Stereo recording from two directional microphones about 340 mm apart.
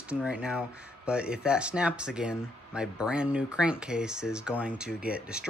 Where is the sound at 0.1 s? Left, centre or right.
Centre.